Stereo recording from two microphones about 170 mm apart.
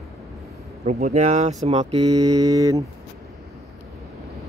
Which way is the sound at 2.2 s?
20° right (ahead or behind).